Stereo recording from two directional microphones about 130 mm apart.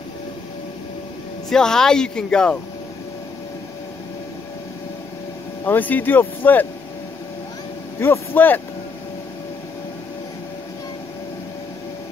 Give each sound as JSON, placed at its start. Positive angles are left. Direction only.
{"t": 1.5, "sound": "speech", "side_deg": 5}
{"t": 5.7, "sound": "speech", "side_deg": 15}
{"t": 8.0, "sound": "speech", "side_deg": 15}